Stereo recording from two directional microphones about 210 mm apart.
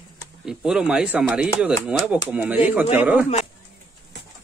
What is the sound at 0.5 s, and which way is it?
Speech, 5° right (ahead or behind).